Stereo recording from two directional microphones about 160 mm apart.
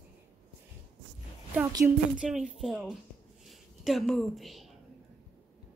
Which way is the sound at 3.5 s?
Centre (ahead or behind).